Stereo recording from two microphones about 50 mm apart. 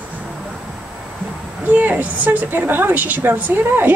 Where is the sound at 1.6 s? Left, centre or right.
Right.